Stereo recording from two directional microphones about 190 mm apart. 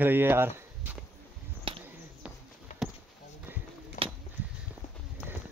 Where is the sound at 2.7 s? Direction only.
40° left (ahead or behind).